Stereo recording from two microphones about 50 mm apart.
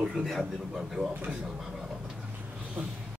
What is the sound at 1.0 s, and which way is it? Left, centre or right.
Speech, right.